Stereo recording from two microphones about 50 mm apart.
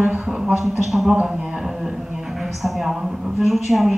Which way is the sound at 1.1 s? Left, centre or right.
Centre.